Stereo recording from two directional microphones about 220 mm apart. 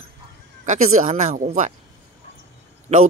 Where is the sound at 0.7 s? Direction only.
35° right (ahead or behind).